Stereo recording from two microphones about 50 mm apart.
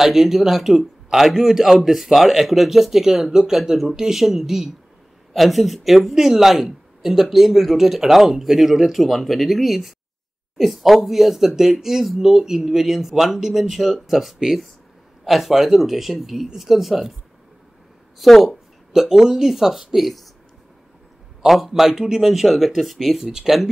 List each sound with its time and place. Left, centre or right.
0.0 s speech: centre
18.2 s speech: centre
18.9 s speech: centre
21.4 s speech: centre